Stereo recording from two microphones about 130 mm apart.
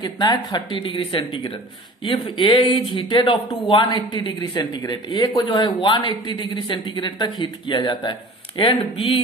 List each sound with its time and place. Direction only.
0.0 s speech: 35° left (ahead or behind)